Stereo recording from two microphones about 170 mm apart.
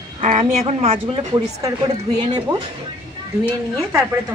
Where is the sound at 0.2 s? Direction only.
45° right (ahead or behind); by 2.4 s 25° right (ahead or behind).